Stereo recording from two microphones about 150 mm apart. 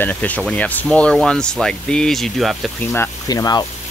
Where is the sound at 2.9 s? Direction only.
25° left (ahead or behind).